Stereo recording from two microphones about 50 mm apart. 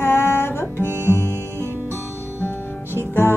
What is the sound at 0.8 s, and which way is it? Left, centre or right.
Music, right.